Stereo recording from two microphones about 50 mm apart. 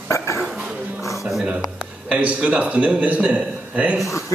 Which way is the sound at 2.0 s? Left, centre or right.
Right.